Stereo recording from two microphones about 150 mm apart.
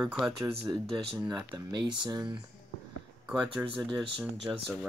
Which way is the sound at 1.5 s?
30° right (ahead or behind).